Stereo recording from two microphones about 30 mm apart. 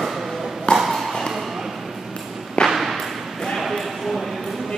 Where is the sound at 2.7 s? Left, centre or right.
Centre.